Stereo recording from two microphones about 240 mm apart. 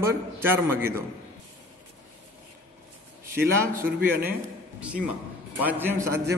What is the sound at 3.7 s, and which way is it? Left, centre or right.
Speech, right.